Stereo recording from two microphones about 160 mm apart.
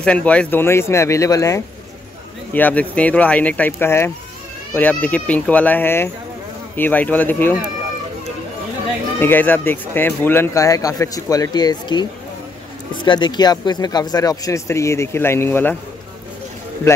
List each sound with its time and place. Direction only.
0.0 s speech: 10° left (ahead or behind)
9.2 s speech: 10° left (ahead or behind)